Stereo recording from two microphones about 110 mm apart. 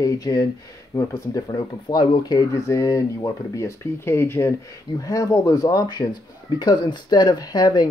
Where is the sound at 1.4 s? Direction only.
40° left (ahead or behind).